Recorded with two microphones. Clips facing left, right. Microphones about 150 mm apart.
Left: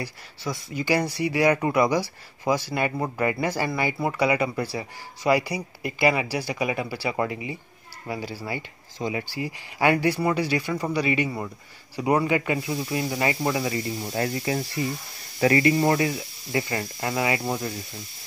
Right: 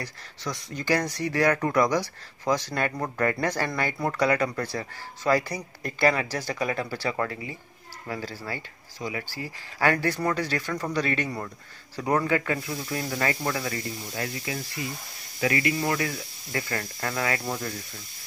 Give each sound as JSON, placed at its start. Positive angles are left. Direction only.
{"t": 0.0, "sound": "speech", "side_deg": 5}
{"t": 14.0, "sound": "speech", "side_deg": 35}
{"t": 16.1, "sound": "speech", "side_deg": 20}